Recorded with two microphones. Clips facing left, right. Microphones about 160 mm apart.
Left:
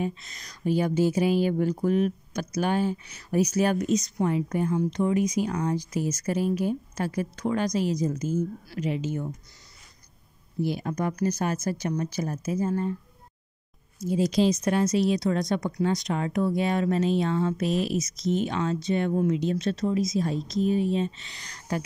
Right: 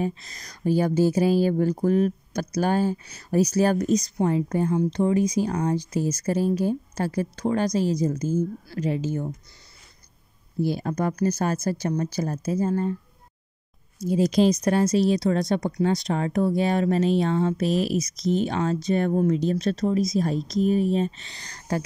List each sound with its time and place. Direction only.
0.0 s speech: 35° right (ahead or behind)
10.6 s speech: 35° right (ahead or behind)
14.0 s speech: 40° right (ahead or behind)
14.6 s speech: 35° right (ahead or behind)